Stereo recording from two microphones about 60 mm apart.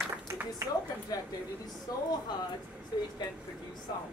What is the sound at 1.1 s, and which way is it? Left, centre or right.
Speech, left.